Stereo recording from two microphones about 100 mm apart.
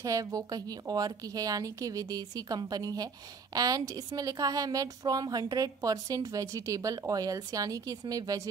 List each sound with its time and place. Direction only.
0.0 s a woman's voice: 35° right (ahead or behind)